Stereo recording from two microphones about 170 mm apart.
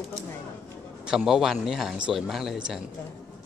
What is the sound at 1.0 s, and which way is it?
A man's voice, 5° right (ahead or behind).